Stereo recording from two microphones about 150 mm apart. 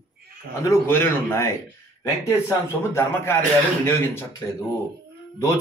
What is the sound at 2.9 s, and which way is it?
Speech, 15° left (ahead or behind).